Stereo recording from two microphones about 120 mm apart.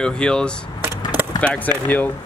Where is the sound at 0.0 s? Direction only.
5° left (ahead or behind).